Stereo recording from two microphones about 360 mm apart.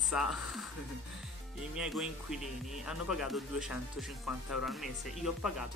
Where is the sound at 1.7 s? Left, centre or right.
Centre.